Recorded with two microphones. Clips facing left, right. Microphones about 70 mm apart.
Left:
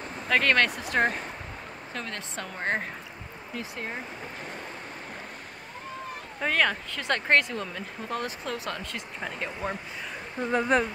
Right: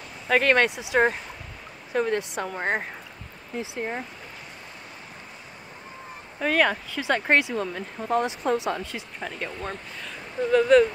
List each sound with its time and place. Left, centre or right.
0.3 s speech: centre
2.0 s speech: centre
6.4 s speech: centre
9.2 s speech: centre
10.4 s speech: left